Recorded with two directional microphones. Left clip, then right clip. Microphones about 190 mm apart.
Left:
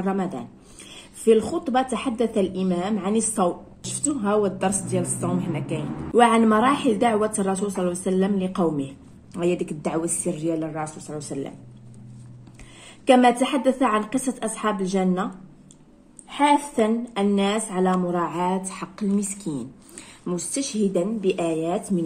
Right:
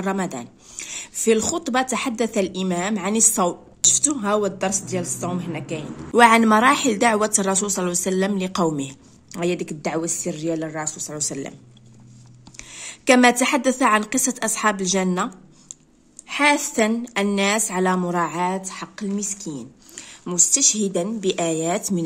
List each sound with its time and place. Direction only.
0.0 s a woman's voice: 55° right (ahead or behind); by 5.9 s 30° right (ahead or behind)
6.1 s a woman's voice: 55° right (ahead or behind)
9.3 s a woman's voice: 35° right (ahead or behind)
10.8 s a woman's voice: 45° right (ahead or behind)
13.0 s a woman's voice: 50° right (ahead or behind)
16.3 s a woman's voice: 55° right (ahead or behind); by 18.6 s 35° right (ahead or behind)
18.7 s speech: 20° right (ahead or behind)
20.2 s a woman's voice: 35° right (ahead or behind)